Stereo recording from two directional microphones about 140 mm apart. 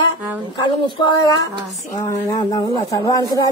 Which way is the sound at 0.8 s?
30° left (ahead or behind).